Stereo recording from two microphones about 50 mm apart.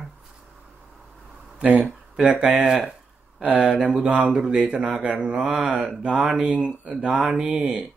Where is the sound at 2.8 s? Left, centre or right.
Centre.